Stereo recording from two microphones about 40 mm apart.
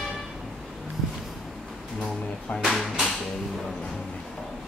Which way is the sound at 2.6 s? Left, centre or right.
Centre.